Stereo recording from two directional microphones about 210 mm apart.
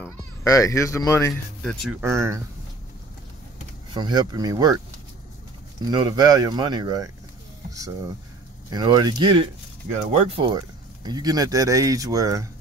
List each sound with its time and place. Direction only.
0.0 s speech: 15° left (ahead or behind)
1.6 s speech: centre (ahead or behind)
2.0 s speech: 10° right (ahead or behind)
3.9 s speech: 20° right (ahead or behind)
5.9 s speech: 20° right (ahead or behind)
8.6 s speech: 20° right (ahead or behind)